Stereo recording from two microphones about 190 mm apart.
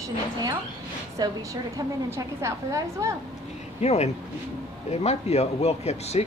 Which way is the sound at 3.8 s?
35° left (ahead or behind).